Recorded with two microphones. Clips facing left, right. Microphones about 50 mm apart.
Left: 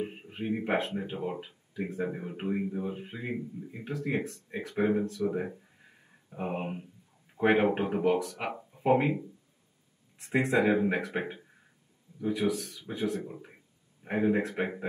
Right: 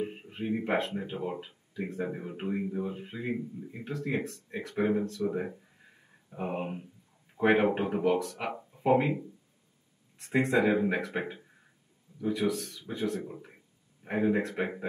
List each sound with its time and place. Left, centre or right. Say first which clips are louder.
0.0 s speech: even; centre
5.3 s a sound: even; centre
7.3 s speech: even; centre
10.1 s speech: even; centre